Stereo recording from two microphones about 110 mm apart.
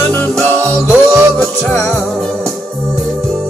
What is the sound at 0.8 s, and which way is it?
Music, 20° right (ahead or behind).